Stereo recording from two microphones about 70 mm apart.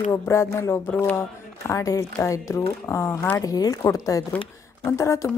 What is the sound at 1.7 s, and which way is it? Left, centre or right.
Speech, left.